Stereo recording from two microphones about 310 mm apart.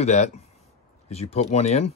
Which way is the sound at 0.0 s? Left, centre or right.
Left.